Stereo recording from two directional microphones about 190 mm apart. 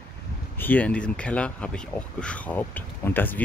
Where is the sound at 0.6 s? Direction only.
10° left (ahead or behind).